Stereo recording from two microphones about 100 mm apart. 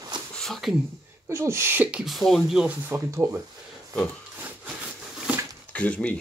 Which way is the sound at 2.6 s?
20° right (ahead or behind).